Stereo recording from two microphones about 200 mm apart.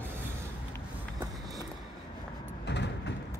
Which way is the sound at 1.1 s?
20° right (ahead or behind).